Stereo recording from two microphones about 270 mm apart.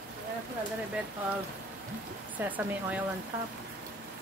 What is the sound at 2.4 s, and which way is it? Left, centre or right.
Speech, centre.